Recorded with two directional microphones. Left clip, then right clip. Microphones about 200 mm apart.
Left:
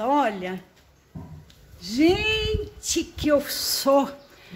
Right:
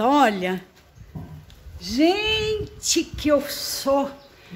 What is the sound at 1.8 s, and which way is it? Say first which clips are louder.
Speech: right 1 dB; 30° right (ahead or behind).